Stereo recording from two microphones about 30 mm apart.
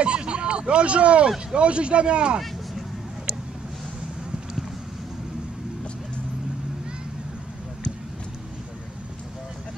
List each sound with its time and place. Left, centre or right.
0.0 s speech: right